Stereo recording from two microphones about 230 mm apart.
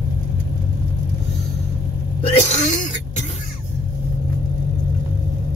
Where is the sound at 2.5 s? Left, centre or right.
Left.